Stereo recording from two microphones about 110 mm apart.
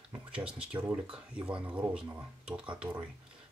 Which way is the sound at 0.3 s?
10° right (ahead or behind).